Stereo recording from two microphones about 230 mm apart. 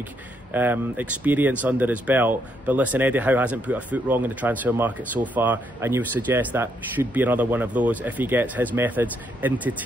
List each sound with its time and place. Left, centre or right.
0.5 s speech: centre